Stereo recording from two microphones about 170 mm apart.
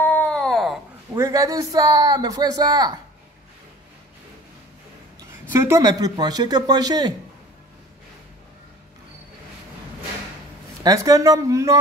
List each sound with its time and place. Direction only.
0.0 s wail: 5° left (ahead or behind)
1.1 s speech: 20° right (ahead or behind)
5.3 s speech: 15° right (ahead or behind)
10.8 s speech: 20° right (ahead or behind)